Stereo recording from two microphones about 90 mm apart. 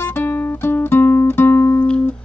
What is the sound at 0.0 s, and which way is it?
Music, 25° left (ahead or behind).